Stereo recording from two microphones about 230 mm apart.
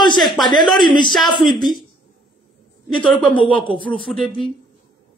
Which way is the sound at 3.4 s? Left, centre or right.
Left.